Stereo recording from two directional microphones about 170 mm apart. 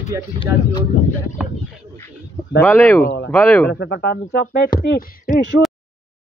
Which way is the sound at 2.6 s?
15° left (ahead or behind).